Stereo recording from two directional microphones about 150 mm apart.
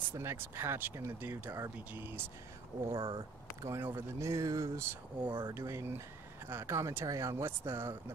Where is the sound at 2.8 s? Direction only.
35° right (ahead or behind).